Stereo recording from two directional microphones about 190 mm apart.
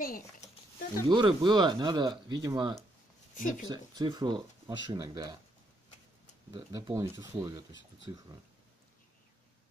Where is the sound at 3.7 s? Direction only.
20° right (ahead or behind).